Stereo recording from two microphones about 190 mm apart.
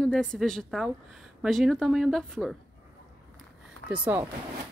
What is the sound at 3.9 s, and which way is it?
Speech, 10° right (ahead or behind).